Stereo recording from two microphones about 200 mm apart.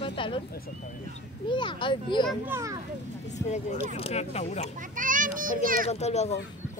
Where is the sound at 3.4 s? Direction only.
35° left (ahead or behind).